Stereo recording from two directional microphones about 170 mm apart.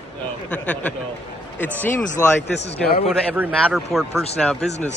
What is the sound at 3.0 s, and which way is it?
A man's voice, centre (ahead or behind).